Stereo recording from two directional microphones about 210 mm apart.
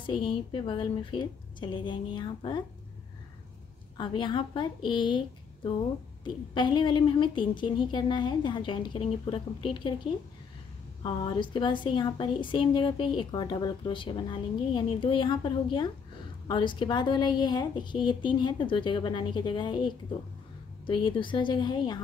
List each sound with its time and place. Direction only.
0.0 s a woman's voice: 25° left (ahead or behind)
4.0 s a woman's voice: 20° left (ahead or behind)
11.0 s a woman's voice: 25° left (ahead or behind)